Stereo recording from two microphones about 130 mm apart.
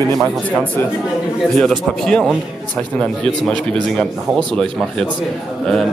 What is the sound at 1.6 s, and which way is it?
A man's voice, 5° left (ahead or behind).